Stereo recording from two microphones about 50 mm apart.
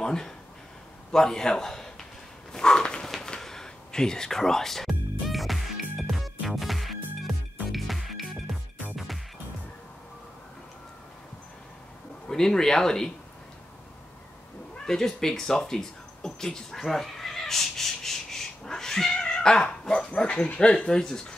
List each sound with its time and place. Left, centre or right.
0.0 s a man's voice: centre
2.5 s a sound: centre
3.3 s music: centre
12.3 s speech: centre
14.9 s a sound: centre
20.1 s speech: centre